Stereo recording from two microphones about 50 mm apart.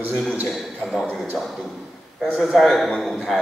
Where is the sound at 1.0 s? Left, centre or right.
Right.